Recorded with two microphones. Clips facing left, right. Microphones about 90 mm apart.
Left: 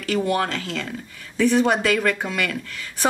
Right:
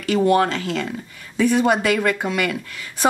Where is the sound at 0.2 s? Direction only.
30° right (ahead or behind).